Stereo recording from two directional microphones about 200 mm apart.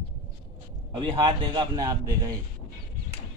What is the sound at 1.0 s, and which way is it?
Speech, 25° right (ahead or behind).